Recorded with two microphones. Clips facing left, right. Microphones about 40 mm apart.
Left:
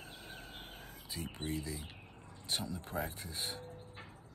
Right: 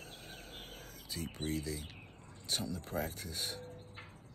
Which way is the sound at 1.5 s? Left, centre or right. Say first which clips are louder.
Right 2 dB; left.